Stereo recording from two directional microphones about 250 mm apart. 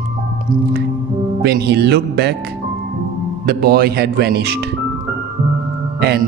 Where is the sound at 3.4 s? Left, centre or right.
Right.